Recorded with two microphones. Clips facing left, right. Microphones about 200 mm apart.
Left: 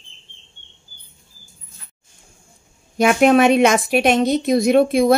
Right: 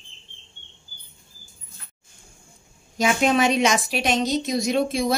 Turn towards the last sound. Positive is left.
turn(degrees=55)  # may be behind; listen again after turning